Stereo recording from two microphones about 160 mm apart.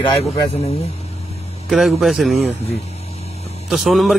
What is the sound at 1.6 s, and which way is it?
Speech, centre (ahead or behind).